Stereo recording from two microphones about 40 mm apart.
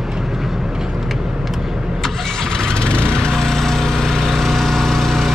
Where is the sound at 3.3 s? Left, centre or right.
Centre.